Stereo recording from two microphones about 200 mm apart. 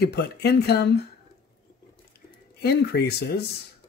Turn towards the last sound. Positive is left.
turn(degrees=55)  # may be behind; listen again after turning